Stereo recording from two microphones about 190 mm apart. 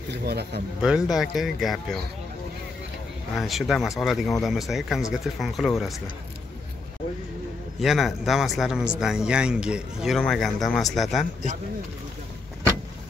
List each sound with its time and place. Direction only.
0.1 s speech: 55° right (ahead or behind)
0.8 s a man's voice: 5° right (ahead or behind)
3.3 s a man's voice: centre (ahead or behind)
7.8 s a man's voice: centre (ahead or behind)